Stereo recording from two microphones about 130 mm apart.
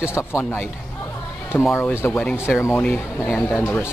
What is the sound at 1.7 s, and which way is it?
Speech, 20° left (ahead or behind).